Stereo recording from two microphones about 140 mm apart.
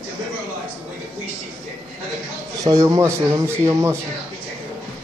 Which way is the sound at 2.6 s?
25° right (ahead or behind).